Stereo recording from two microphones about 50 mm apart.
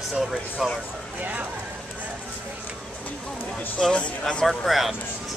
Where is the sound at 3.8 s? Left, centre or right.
Left.